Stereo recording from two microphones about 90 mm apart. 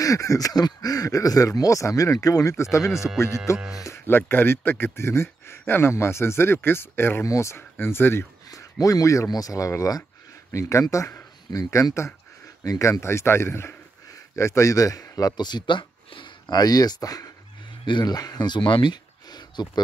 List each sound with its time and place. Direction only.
0.0 s speech: 40° left (ahead or behind)
3.5 s speech: 5° right (ahead or behind)
3.8 s speech: 30° left (ahead or behind)
8.5 s speech: 40° left (ahead or behind); by 16.5 s 65° left (ahead or behind)
16.5 s speech: 45° left (ahead or behind)
17.8 s speech: 55° left (ahead or behind)